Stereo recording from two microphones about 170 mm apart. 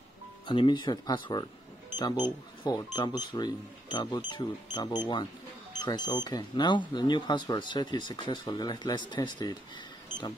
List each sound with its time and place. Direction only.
0.5 s speech: 30° left (ahead or behind)